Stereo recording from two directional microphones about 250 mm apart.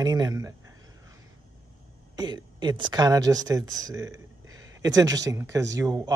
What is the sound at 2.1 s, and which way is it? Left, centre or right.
Speech, centre.